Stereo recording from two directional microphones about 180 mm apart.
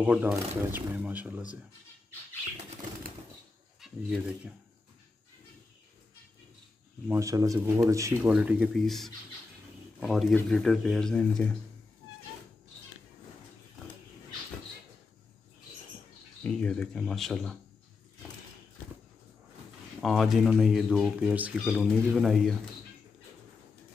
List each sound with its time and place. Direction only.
0.0 s speech: 10° right (ahead or behind)
3.8 s speech: 5° right (ahead or behind)
7.1 s speech: 15° right (ahead or behind)
8.2 s speech: 5° right (ahead or behind)
16.4 s speech: 5° left (ahead or behind)
20.0 s speech: centre (ahead or behind)